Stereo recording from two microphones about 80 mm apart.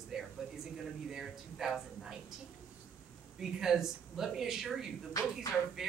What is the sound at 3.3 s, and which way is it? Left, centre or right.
Speech, centre.